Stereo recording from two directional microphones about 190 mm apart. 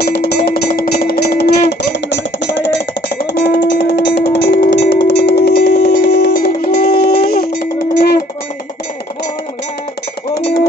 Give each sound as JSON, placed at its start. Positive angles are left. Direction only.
{"t": 0.0, "sound": "music", "side_deg": 55}